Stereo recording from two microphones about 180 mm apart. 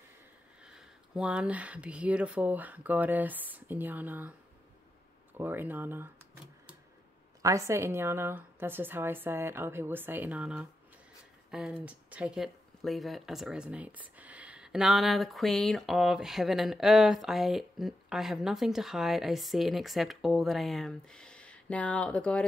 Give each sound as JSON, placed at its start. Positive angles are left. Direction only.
{"t": 0.7, "sound": "speech", "side_deg": -5}
{"t": 5.4, "sound": "speech", "side_deg": -10}
{"t": 7.4, "sound": "speech", "side_deg": -15}